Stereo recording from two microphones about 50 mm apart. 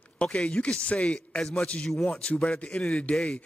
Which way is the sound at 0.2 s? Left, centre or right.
Left.